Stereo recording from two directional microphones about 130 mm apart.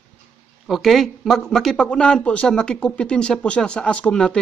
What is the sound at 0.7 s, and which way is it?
Speech, centre (ahead or behind).